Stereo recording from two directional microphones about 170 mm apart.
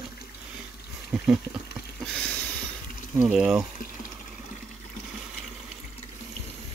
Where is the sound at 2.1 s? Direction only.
5° left (ahead or behind).